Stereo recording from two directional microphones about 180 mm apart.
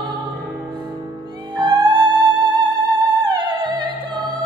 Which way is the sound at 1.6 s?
25° right (ahead or behind).